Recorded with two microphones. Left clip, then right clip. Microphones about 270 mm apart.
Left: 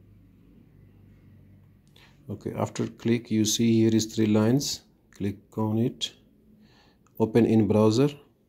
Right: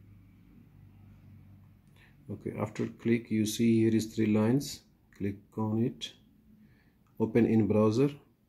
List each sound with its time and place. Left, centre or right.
2.0 s speech: centre
7.2 s speech: centre